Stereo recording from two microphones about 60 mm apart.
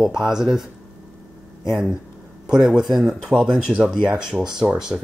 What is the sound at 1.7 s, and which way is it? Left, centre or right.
Speech, centre.